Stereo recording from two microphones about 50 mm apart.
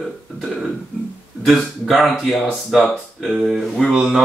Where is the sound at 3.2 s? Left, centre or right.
Centre.